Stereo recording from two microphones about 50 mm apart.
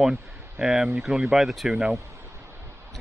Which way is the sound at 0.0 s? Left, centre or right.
Centre.